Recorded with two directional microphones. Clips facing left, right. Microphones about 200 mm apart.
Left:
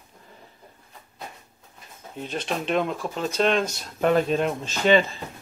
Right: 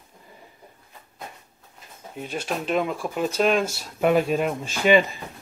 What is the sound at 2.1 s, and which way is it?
Speech, 5° right (ahead or behind).